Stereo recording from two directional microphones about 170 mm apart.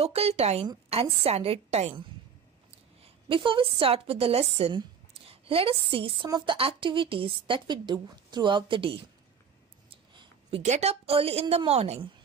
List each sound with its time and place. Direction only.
0.0 s a woman's voice: 35° right (ahead or behind)
3.3 s a woman's voice: 30° right (ahead or behind)